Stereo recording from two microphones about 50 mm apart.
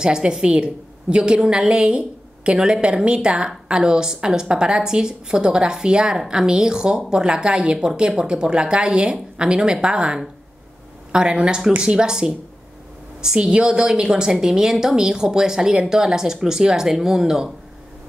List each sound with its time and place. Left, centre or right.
0.0 s a woman's voice: centre